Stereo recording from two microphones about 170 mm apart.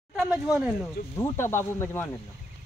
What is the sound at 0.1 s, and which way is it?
Speech, 5° right (ahead or behind).